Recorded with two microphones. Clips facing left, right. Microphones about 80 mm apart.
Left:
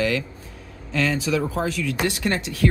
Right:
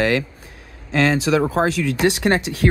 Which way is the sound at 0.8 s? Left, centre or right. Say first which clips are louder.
Right 5 dB; right.